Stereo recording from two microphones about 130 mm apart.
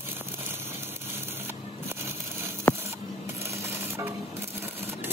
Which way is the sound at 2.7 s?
15° left (ahead or behind).